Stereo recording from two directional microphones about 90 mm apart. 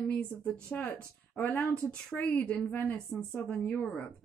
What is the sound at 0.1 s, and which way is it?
Speech, 15° left (ahead or behind).